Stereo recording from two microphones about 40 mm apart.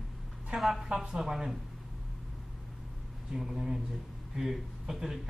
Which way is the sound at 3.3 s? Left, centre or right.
Centre.